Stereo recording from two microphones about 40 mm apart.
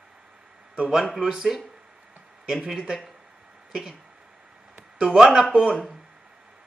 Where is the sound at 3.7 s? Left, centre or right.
Centre.